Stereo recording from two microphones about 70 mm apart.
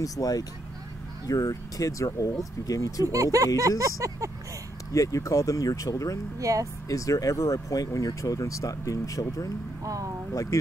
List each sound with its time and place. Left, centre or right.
0.0 s speech: left
3.0 s speech: right
4.9 s speech: left
6.4 s speech: right
6.9 s speech: left
9.8 s speech: right
10.3 s speech: left